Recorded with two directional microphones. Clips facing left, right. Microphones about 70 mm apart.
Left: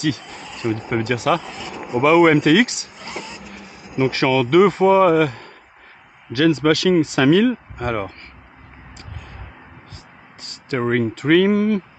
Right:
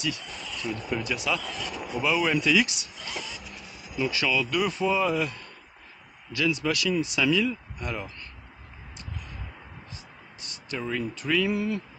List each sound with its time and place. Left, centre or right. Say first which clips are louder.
0.2 s a sound: left 4 dB; left
0.7 s speech: left 9 dB; left
1.4 s speech: left 3 dB; left
2.0 s speech: left 12 dB; left
4.0 s speech: left 9 dB; left
10.4 s speech: left 11 dB; left